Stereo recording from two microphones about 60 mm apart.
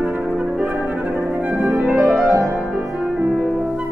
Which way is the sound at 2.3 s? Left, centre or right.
Right.